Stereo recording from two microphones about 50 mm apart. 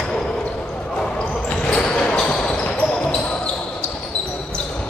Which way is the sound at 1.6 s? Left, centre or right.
Left.